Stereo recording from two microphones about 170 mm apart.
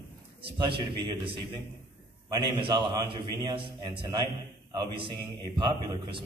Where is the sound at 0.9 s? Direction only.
30° right (ahead or behind).